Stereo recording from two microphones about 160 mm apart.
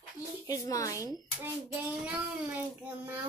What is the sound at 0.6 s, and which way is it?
Music, 20° left (ahead or behind).